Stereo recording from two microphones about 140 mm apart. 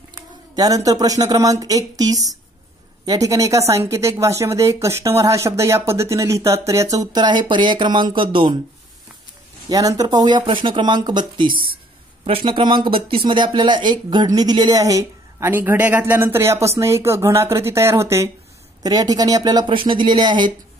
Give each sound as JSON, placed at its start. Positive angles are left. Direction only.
{"t": 0.1, "sound": "speech", "side_deg": -25}
{"t": 7.1, "sound": "speech", "side_deg": -30}
{"t": 9.7, "sound": "speech", "side_deg": -25}